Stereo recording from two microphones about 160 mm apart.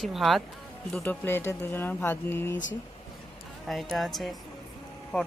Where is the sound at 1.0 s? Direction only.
15° left (ahead or behind).